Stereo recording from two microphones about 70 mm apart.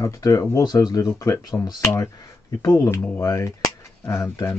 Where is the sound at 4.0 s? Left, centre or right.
Left.